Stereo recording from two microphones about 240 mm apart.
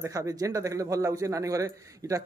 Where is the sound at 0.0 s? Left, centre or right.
Centre.